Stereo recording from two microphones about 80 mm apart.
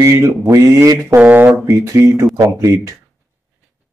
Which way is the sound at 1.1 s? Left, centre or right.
Right.